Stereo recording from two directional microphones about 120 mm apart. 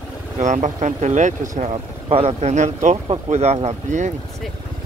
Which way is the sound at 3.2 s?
65° right (ahead or behind).